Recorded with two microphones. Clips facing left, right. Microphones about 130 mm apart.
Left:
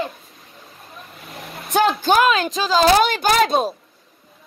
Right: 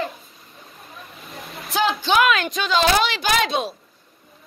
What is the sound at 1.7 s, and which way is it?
A woman's voice, 45° left (ahead or behind).